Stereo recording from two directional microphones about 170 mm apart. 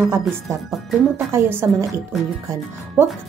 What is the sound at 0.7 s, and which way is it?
A woman's voice, 10° right (ahead or behind).